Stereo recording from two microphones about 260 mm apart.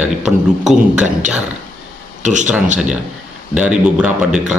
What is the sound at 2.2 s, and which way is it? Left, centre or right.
Speech, right.